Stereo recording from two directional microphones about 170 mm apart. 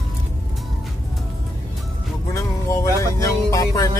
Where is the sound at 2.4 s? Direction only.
20° left (ahead or behind).